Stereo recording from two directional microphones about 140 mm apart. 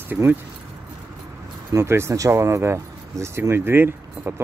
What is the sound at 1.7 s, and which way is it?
Speech, 20° right (ahead or behind).